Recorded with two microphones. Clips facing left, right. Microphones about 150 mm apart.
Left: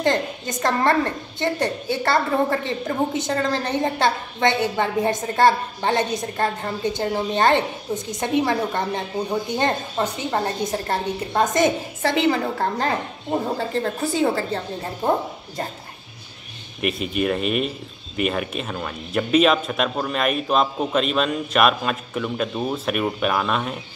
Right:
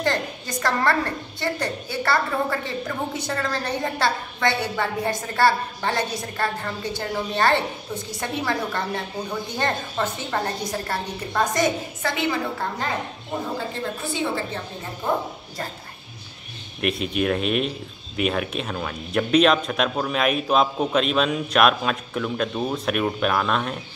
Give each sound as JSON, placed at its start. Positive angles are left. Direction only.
{"t": 0.0, "sound": "a woman's voice", "side_deg": 20}
{"t": 16.8, "sound": "speech", "side_deg": 0}